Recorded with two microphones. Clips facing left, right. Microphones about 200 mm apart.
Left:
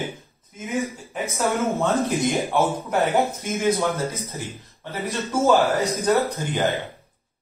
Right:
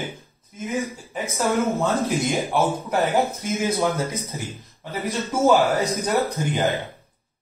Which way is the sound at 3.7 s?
15° right (ahead or behind).